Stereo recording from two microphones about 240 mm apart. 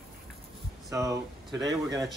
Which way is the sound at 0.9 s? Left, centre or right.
Centre.